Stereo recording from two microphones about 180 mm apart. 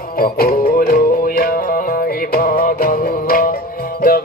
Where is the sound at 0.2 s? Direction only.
55° left (ahead or behind).